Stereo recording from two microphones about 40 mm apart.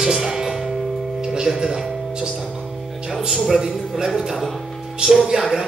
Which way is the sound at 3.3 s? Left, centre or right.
Centre.